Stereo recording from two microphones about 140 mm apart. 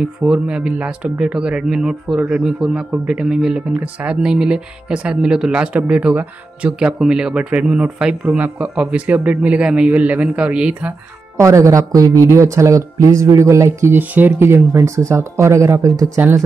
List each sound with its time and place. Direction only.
0.0 s speech: 5° right (ahead or behind)
11.3 s speech: 20° right (ahead or behind)